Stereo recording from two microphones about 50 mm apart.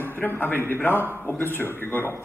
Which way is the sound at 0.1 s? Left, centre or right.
Left.